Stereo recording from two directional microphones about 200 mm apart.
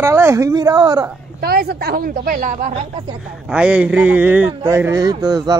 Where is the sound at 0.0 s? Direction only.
15° right (ahead or behind).